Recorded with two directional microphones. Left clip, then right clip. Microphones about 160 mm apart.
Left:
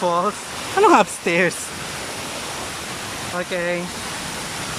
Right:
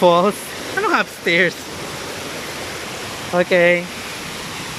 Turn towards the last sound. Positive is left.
turn(degrees=-20)  # may be behind; listen again after turning